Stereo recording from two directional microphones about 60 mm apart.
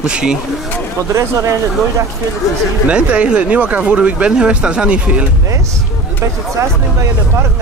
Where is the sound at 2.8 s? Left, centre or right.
Centre.